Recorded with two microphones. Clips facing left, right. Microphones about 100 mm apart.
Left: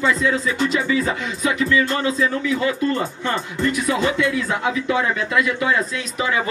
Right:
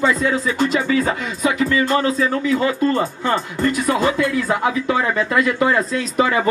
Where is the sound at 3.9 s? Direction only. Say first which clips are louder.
Right 2 dB; 45° right (ahead or behind).